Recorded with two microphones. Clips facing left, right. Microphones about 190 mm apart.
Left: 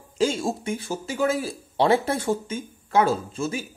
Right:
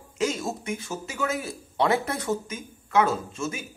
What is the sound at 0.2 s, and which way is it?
Speech, 30° left (ahead or behind).